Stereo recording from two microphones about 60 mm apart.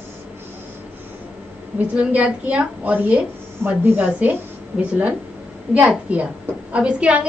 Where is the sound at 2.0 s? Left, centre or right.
Right.